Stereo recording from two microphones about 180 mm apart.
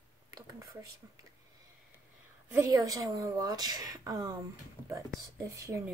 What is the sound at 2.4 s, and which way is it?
A woman's voice, 15° right (ahead or behind).